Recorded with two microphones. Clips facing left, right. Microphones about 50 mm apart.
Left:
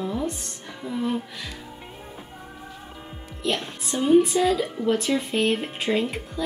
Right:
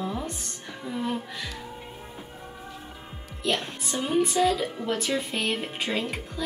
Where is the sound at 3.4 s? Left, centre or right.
Centre.